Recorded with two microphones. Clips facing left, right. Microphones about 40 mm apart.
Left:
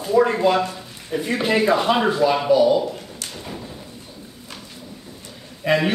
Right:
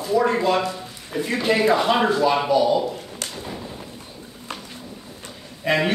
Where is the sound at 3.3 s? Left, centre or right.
Centre.